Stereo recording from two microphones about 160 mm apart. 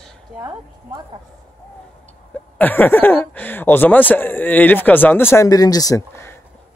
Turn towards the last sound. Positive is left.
turn(degrees=15)  # may be behind; listen again after turning